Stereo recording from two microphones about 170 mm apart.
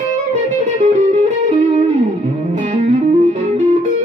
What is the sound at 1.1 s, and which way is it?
Music, 40° right (ahead or behind).